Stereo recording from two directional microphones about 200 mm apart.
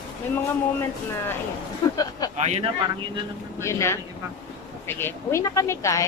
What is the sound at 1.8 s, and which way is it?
Speech, 20° left (ahead or behind).